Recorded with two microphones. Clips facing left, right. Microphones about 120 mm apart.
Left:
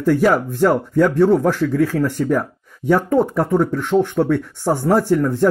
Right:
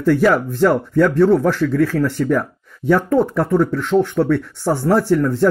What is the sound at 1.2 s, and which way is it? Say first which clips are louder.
Speech: right 1 dB; 30° left (ahead or behind).